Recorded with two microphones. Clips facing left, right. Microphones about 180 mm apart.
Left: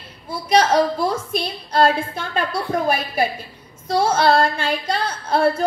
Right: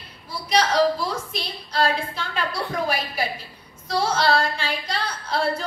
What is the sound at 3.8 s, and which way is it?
A woman's voice, 50° left (ahead or behind).